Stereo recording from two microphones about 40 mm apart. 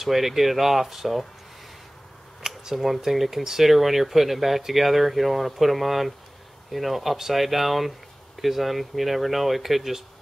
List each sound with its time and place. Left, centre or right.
0.0 s speech: centre
2.4 s speech: centre